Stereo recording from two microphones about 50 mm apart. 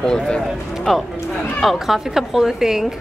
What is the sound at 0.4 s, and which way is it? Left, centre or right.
Speech, centre.